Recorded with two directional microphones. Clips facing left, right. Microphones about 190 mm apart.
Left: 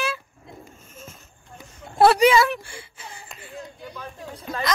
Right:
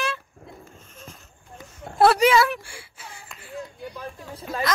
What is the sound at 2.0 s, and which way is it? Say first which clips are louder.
A child's voice: left 1 dB; centre (ahead or behind).